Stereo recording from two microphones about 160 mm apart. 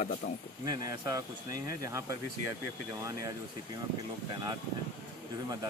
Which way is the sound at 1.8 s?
20° right (ahead or behind).